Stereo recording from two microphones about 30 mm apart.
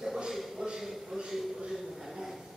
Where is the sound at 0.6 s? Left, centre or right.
Right.